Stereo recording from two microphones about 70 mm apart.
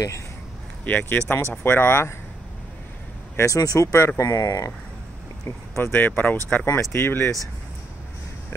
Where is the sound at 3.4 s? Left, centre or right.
Left.